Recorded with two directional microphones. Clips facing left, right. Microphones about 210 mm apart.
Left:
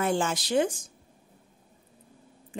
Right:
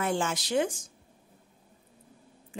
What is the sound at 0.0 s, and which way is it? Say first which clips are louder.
Speech: left 3 dB; 35° left (ahead or behind).